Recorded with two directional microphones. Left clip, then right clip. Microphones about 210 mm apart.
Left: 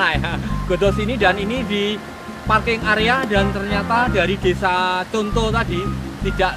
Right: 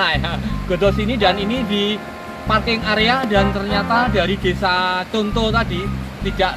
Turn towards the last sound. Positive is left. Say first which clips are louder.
# even
turn(degrees=5)  # may be behind; listen again after turning